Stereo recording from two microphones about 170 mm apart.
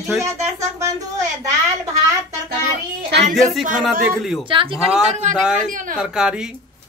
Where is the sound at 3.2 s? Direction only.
Centre (ahead or behind).